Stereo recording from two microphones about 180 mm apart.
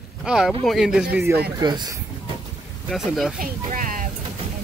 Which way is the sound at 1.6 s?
25° right (ahead or behind).